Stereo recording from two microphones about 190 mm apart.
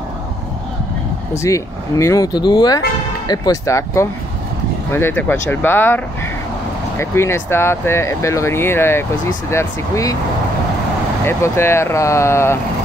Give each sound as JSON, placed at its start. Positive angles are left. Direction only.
{"t": 1.3, "sound": "speech", "side_deg": 15}
{"t": 11.2, "sound": "speech", "side_deg": 15}